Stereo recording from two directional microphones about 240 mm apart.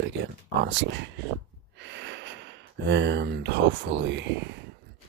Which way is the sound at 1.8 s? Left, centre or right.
Right.